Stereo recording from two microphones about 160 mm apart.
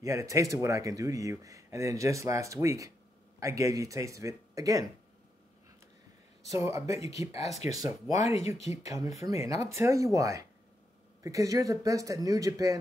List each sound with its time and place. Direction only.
0.0 s speech: 20° right (ahead or behind)
6.5 s speech: 20° right (ahead or behind)